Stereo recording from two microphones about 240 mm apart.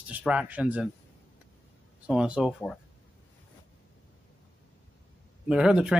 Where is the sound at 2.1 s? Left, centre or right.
Centre.